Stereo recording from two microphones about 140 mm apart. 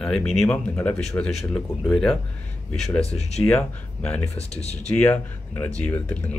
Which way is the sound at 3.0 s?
45° left (ahead or behind).